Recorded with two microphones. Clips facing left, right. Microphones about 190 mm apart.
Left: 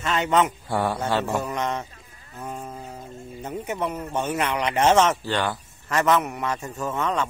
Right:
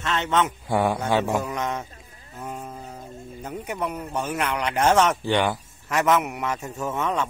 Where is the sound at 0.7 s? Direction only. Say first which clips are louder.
Right 2 dB; 15° right (ahead or behind).